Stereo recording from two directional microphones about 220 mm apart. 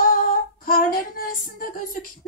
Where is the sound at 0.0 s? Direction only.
40° left (ahead or behind).